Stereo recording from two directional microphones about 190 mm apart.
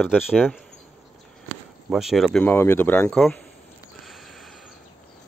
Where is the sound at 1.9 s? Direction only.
Centre (ahead or behind).